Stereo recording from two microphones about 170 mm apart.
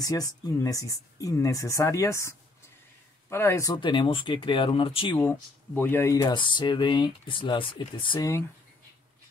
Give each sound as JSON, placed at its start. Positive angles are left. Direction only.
{"t": 0.0, "sound": "speech", "side_deg": 20}
{"t": 5.2, "sound": "speech", "side_deg": 10}
{"t": 6.2, "sound": "speech", "side_deg": 30}